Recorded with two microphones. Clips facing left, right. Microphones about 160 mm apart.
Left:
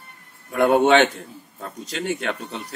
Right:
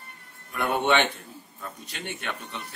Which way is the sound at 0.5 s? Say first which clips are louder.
Left 8 dB; 90° left.